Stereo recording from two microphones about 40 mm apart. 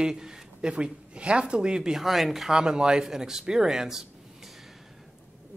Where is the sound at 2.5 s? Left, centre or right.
Centre.